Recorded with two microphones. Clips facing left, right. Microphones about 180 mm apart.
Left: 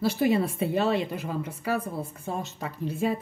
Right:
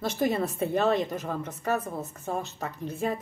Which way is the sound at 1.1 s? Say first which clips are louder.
Even; 45° right (ahead or behind).